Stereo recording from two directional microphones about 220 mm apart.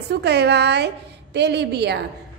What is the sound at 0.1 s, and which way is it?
A woman's voice, 50° right (ahead or behind).